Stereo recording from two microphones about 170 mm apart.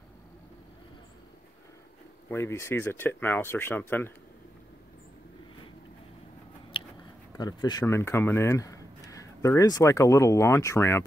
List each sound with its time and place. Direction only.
2.2 s speech: 15° left (ahead or behind)
6.7 s a sound: 30° left (ahead or behind)
7.3 s speech: 25° left (ahead or behind)